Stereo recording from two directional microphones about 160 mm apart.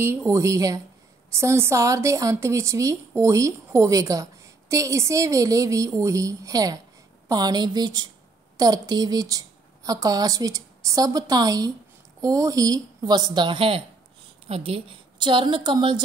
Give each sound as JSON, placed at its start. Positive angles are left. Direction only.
{"t": 0.3, "sound": "a woman's voice", "side_deg": -20}